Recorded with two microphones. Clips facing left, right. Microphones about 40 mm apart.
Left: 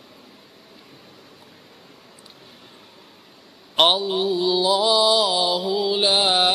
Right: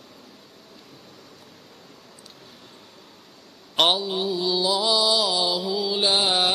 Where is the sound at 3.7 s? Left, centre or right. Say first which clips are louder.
Left 3 dB; centre.